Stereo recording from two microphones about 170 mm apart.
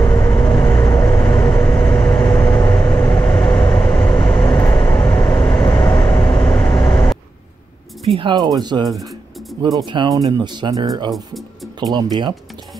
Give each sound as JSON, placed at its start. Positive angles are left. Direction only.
{"t": 0.0, "sound": "vehicle", "side_deg": 20}
{"t": 8.0, "sound": "speech", "side_deg": -30}